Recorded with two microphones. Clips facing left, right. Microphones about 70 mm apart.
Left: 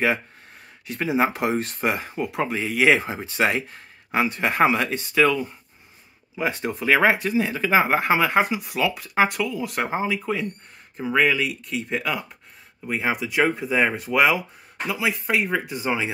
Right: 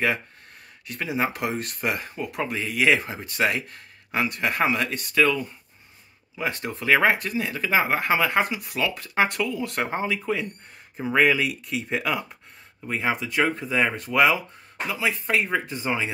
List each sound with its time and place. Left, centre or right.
0.8 s speech: left; by 16.1 s centre